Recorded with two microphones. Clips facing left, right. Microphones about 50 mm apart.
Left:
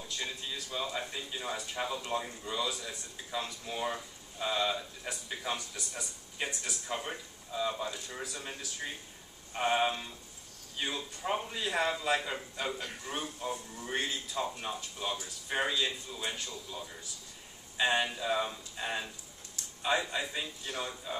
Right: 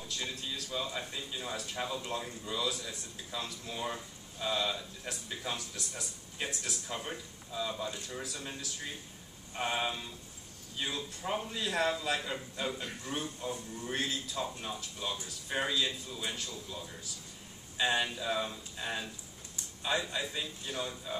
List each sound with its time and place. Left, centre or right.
0.1 s speech: centre